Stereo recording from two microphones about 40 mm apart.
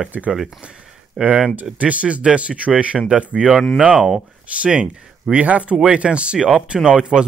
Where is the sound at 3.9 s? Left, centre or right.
Centre.